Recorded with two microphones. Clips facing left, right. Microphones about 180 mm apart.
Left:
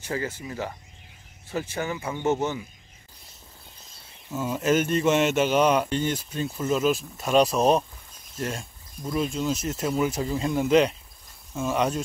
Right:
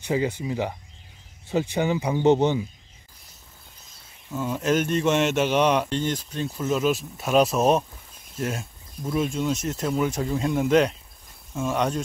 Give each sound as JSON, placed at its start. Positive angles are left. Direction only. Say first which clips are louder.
{"t": 0.0, "sound": "speech", "louder": "right 6 dB", "side_deg": -15}
{"t": 4.3, "sound": "speech", "louder": "even", "side_deg": 0}